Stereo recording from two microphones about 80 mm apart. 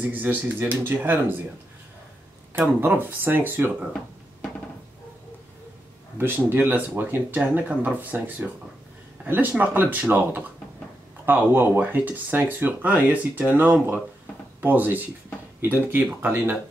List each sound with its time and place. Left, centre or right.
0.0 s speech: right
2.8 s speech: right
6.1 s speech: right